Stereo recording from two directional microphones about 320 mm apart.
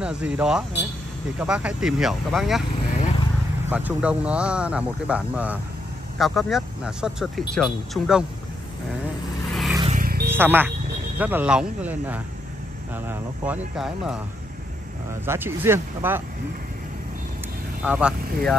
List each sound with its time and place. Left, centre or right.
0.0 s speech: centre
3.7 s speech: centre
9.5 s vehicle: centre
9.8 s vehicle: right
10.3 s speech: centre
15.2 s speech: centre
17.8 s speech: centre